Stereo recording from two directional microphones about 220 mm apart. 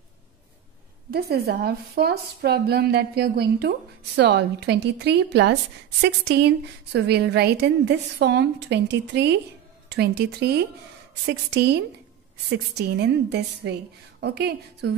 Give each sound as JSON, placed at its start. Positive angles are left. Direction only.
{"t": 1.1, "sound": "a woman's voice", "side_deg": -45}